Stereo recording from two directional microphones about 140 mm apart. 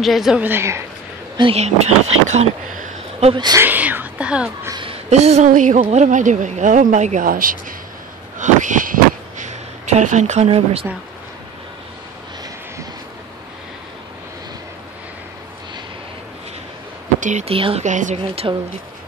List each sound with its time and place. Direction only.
0.0 s a woman's voice: centre (ahead or behind)
0.4 s speech: 15° right (ahead or behind)
1.5 s speech: 50° right (ahead or behind)
3.3 s speech: 30° right (ahead or behind)
3.6 s speech: 15° right (ahead or behind)
4.8 s a sound: 50° right (ahead or behind)
5.5 s speech: 65° right (ahead or behind)
5.8 s speech: 55° right (ahead or behind); by 7.5 s 80° right
8.4 s a sound: 65° right (ahead or behind); by 10.9 s 45° right (ahead or behind)
17.2 s speech: 60° right (ahead or behind)
17.5 s speech: 40° right (ahead or behind)
17.8 s speech: 60° right (ahead or behind)
18.4 s speech: 30° right (ahead or behind)